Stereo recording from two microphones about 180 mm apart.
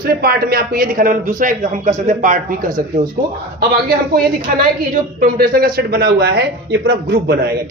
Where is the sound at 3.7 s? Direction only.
55° right (ahead or behind).